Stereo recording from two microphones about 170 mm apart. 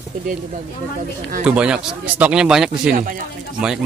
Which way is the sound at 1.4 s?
5° right (ahead or behind).